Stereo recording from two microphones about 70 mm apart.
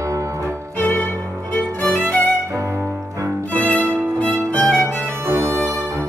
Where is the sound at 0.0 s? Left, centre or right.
Right.